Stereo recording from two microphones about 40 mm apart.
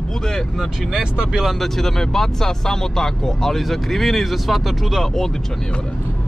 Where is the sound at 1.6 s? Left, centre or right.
Centre.